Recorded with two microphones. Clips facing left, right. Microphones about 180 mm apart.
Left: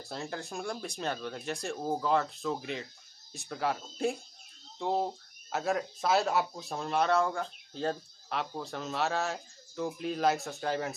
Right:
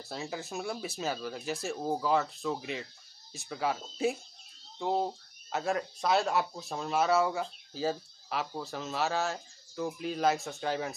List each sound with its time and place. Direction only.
0.0 s speech: centre (ahead or behind)